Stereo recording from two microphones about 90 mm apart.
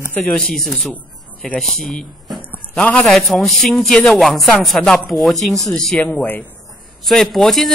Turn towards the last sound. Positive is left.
turn(degrees=5)  # may be behind; listen again after turning